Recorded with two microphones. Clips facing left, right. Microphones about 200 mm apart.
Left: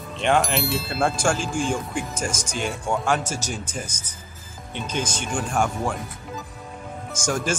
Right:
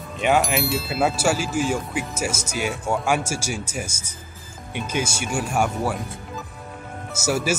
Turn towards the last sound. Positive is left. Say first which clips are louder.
# right 2 dB
turn(degrees=-10)  # may be behind; listen again after turning